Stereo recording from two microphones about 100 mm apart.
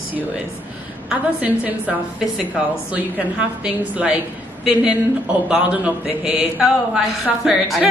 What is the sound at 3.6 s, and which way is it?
A man's voice, 15° right (ahead or behind).